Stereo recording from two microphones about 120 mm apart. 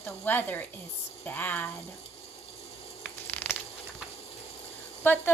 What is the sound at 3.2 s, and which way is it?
Crushing, 15° left (ahead or behind).